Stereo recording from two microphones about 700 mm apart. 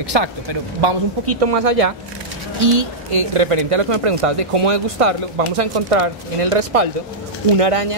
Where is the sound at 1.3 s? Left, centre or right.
Right.